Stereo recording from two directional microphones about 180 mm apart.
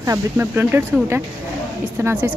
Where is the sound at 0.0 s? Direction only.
15° right (ahead or behind).